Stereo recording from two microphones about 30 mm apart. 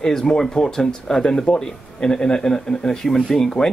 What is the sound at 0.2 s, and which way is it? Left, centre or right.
Speech, left.